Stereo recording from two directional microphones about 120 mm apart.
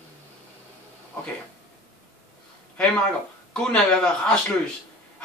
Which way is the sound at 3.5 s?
10° left (ahead or behind).